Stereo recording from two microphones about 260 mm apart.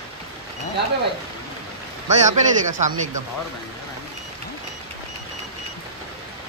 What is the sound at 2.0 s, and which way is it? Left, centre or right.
Speech, right.